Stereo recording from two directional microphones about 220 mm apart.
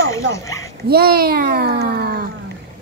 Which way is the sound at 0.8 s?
45° right (ahead or behind).